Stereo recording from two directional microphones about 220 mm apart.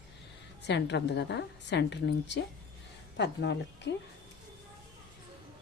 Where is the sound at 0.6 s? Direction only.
50° left (ahead or behind).